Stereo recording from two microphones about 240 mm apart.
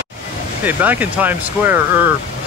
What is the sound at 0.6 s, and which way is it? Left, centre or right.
Speech, centre.